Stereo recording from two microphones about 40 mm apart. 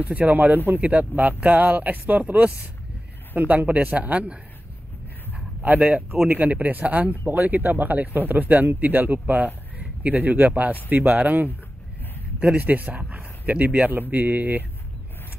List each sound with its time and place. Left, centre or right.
0.0 s speech: right
5.3 s a sound: right
6.2 s a man's voice: right
14.1 s speech: right